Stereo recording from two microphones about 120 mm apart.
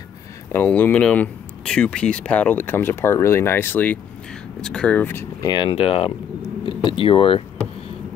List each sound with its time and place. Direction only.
0.5 s speech: 15° left (ahead or behind)
5.7 s speech: 50° left (ahead or behind)
6.6 s speech: 40° left (ahead or behind)